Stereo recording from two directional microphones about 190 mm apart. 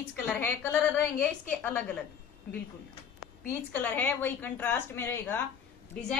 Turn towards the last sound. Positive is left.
turn(degrees=5)  # may be behind; listen again after turning